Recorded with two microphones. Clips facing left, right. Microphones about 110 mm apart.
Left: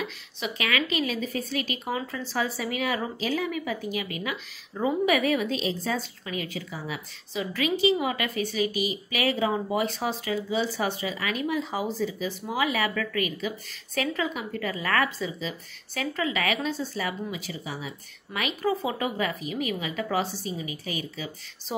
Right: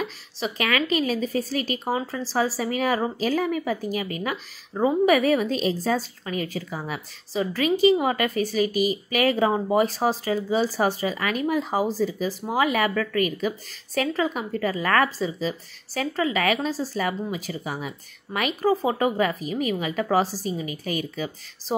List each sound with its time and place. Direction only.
0.0 s a woman's voice: 40° right (ahead or behind)